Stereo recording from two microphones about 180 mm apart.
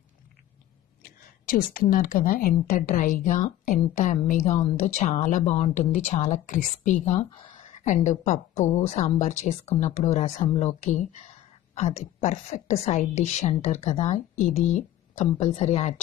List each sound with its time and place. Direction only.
1.0 s a woman's voice: 50° left (ahead or behind)